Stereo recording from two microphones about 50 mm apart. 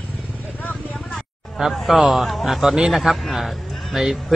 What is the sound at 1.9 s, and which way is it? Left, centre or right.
A man's voice, centre.